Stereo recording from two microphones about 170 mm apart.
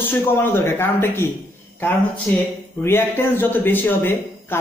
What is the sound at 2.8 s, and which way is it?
A man's voice, 15° left (ahead or behind).